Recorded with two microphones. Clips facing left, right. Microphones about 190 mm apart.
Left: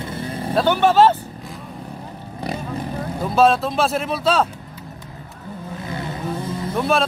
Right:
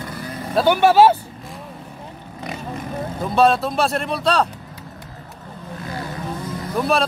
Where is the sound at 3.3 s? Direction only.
Centre (ahead or behind).